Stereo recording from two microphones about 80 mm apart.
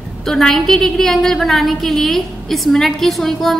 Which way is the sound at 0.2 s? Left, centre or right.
Centre.